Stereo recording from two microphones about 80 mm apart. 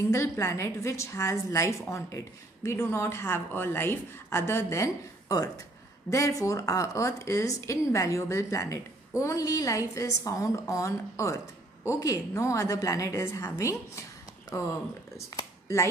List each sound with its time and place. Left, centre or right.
0.1 s speech: left
14.5 s speech: left